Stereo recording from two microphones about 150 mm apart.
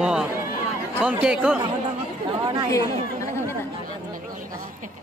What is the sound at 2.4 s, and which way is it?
Chatter, 30° right (ahead or behind).